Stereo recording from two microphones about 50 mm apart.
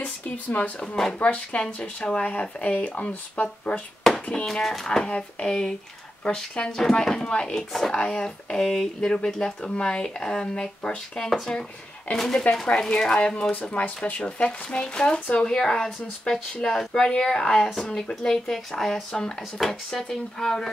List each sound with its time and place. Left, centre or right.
0.0 s speech: left
4.1 s hands: centre
4.5 s speech: centre
11.1 s speech: centre
13.5 s speech: left
15.4 s speech: centre
16.7 s speech: centre